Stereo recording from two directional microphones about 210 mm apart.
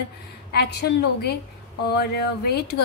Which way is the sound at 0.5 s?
50° left (ahead or behind).